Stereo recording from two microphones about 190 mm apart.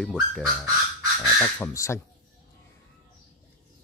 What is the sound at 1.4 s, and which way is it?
Speech, 15° left (ahead or behind).